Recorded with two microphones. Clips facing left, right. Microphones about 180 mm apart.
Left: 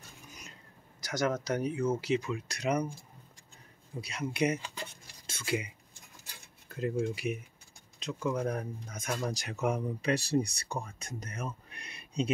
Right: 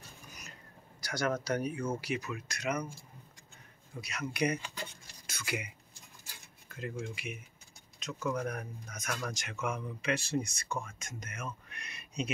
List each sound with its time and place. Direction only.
1.0 s speech: 20° left (ahead or behind)
4.0 s speech: 30° left (ahead or behind)
6.7 s speech: 35° left (ahead or behind)